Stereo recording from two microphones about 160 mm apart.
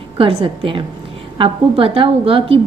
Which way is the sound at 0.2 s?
35° right (ahead or behind).